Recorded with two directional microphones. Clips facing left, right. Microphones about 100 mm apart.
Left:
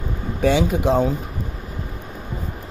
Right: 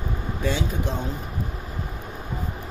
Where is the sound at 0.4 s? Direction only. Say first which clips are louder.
Left 9 dB; 80° left.